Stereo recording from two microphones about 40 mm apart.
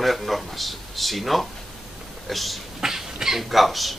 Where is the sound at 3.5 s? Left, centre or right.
Centre.